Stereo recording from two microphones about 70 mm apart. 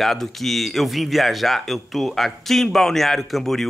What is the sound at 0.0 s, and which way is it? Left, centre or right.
Speech, centre.